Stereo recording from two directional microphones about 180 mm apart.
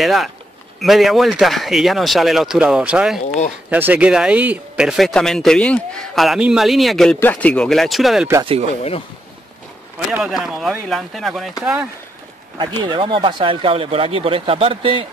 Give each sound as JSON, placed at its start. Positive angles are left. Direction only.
{"t": 0.0, "sound": "speech", "side_deg": 0}
{"t": 9.9, "sound": "speech", "side_deg": -5}
{"t": 12.5, "sound": "speech", "side_deg": -25}